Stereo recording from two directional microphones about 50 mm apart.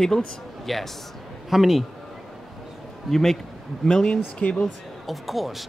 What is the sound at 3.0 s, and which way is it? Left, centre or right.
Speech, centre.